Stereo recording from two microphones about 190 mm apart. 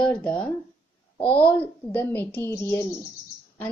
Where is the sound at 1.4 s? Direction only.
10° left (ahead or behind).